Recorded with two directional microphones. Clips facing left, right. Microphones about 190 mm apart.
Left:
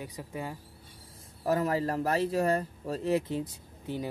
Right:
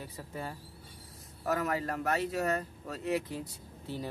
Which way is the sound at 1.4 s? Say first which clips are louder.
Left 4 dB; 30° left (ahead or behind).